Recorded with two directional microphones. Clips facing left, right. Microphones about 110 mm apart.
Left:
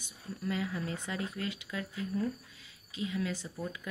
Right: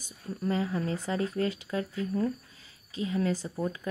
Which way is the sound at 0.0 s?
35° right (ahead or behind).